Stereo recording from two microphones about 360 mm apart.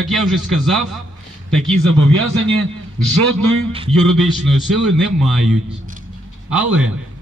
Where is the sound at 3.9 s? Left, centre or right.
Centre.